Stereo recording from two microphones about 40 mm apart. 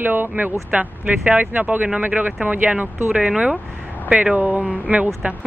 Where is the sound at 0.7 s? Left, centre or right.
Right.